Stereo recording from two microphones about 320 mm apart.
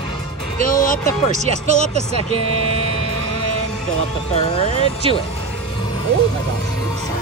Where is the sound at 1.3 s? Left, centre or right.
Right.